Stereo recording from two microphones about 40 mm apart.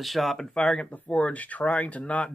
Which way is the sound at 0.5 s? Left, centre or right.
Centre.